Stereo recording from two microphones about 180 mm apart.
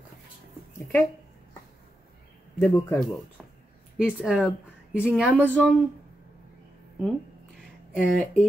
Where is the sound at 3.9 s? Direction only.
5° right (ahead or behind).